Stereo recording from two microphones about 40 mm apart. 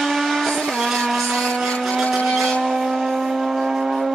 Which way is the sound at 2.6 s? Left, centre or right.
Centre.